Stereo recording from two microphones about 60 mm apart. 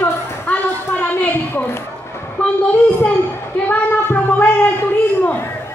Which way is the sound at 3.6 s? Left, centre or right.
Left.